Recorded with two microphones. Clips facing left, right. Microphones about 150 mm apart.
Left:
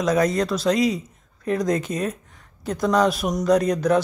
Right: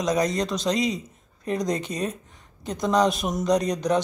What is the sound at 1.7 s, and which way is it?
Speech, 45° left (ahead or behind).